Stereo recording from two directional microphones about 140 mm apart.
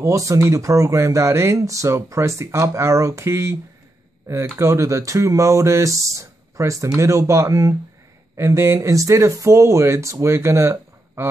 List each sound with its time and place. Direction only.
0.0 s speech: 20° right (ahead or behind)
4.6 s speech: 20° right (ahead or behind)